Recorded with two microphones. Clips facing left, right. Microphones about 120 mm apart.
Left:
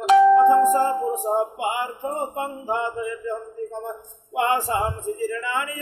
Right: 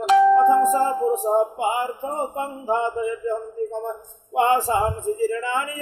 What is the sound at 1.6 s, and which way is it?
Speech, 35° right (ahead or behind).